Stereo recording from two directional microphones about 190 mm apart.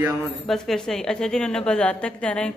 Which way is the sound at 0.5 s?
Centre (ahead or behind).